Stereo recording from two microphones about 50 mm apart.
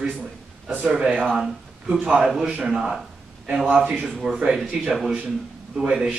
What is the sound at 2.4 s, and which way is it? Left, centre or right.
Speech, centre.